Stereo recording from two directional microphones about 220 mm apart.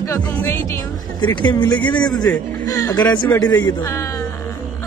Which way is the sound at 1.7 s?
20° left (ahead or behind).